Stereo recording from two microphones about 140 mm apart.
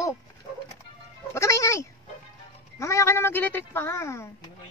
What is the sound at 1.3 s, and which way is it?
A woman's voice, 20° left (ahead or behind).